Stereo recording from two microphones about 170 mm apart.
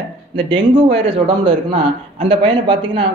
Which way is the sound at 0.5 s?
30° right (ahead or behind).